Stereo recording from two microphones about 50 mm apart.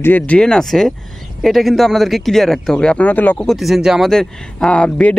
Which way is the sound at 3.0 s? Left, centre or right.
Left.